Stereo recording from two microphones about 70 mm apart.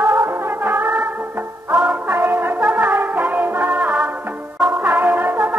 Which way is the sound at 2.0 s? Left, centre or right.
Right.